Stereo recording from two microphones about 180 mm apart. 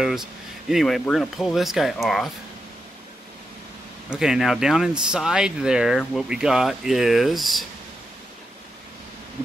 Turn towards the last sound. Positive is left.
turn(degrees=0)  # may be behind; listen again after turning